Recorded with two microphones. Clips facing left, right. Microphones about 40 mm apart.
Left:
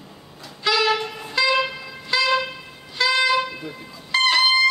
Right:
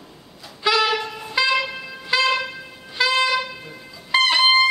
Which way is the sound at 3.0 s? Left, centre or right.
Centre.